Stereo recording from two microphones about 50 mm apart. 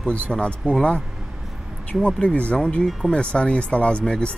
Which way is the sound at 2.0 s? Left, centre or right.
Left.